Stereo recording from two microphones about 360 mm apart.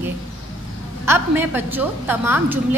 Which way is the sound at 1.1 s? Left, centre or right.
Centre.